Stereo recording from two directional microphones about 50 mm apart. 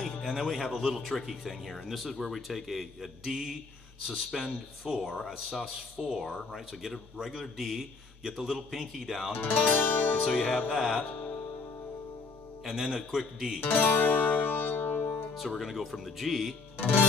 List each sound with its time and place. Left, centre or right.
0.2 s speech: centre
9.3 s music: left
10.3 s music: centre
10.7 s speech: centre
12.6 s speech: centre
13.6 s music: left
15.3 s speech: centre
16.7 s speech: left